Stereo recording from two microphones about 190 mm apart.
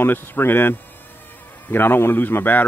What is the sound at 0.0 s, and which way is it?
Speech, 10° left (ahead or behind).